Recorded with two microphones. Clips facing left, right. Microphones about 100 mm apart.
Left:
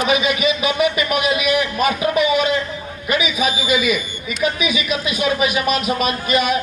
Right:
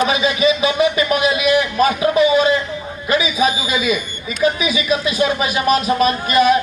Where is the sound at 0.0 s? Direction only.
30° right (ahead or behind).